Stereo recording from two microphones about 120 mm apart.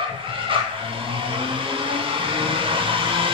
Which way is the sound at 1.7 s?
45° right (ahead or behind).